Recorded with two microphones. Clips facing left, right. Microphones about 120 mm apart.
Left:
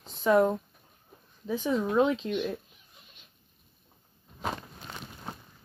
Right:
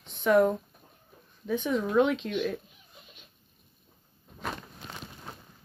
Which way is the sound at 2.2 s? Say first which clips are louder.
Even; 15° left (ahead or behind).